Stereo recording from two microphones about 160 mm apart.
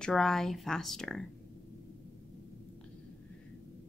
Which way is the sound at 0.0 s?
5° left (ahead or behind).